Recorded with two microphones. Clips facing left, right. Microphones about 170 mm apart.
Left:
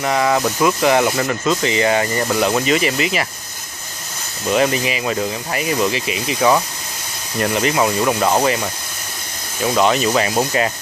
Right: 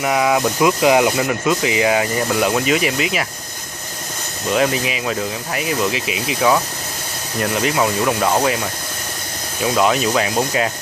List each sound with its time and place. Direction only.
0.0 s speech: 5° right (ahead or behind)
4.5 s speech: centre (ahead or behind)